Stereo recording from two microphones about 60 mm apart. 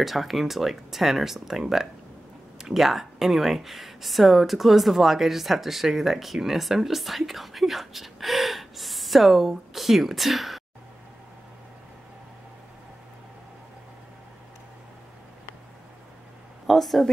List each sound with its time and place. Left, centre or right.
0.0 s speech: centre
16.6 s speech: centre